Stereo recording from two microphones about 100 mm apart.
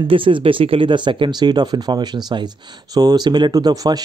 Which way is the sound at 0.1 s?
60° right (ahead or behind).